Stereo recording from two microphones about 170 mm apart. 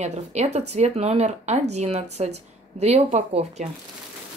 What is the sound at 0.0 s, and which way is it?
Speech, 40° right (ahead or behind).